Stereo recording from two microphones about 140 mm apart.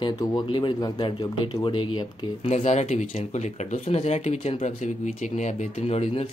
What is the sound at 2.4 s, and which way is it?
Speech, 50° left (ahead or behind).